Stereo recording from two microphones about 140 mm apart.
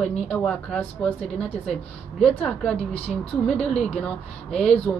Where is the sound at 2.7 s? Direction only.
45° left (ahead or behind).